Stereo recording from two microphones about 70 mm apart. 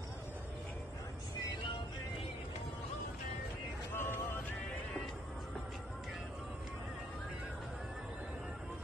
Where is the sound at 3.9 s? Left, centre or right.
Left.